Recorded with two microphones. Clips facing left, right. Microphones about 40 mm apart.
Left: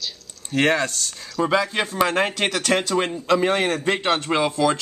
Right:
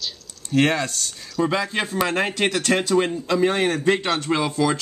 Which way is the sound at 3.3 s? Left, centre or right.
Centre.